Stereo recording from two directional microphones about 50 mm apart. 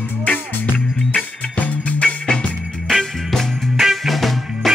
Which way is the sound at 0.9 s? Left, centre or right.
Left.